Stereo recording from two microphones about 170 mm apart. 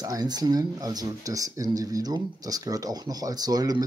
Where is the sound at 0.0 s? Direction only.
25° right (ahead or behind).